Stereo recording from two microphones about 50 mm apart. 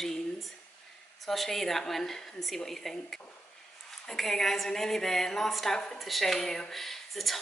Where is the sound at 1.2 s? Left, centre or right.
Centre.